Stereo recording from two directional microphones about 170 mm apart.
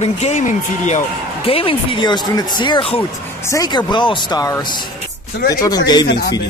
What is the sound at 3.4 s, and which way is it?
Speech, 20° left (ahead or behind).